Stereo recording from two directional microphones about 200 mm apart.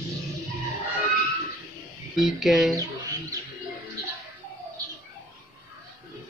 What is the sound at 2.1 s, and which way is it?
Speech, centre (ahead or behind).